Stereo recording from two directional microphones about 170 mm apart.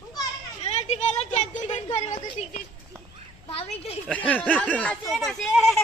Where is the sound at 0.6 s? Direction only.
40° left (ahead or behind).